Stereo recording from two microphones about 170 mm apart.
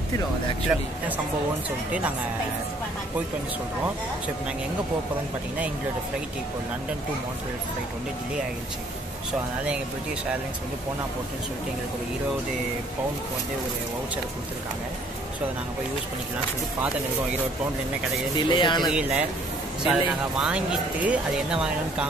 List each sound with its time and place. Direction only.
0.7 s speech: 10° right (ahead or behind)
18.5 s speech: 25° left (ahead or behind)
18.9 s speech: 5° right (ahead or behind)